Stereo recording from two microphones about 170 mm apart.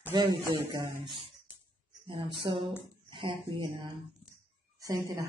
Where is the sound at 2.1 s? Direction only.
30° right (ahead or behind).